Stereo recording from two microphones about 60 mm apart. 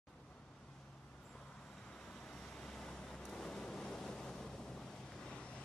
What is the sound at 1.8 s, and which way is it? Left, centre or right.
Vehicle, centre.